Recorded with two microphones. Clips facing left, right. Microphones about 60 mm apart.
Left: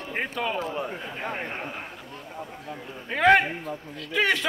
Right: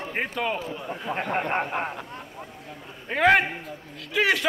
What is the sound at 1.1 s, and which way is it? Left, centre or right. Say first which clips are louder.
Speech: right 6 dB; right.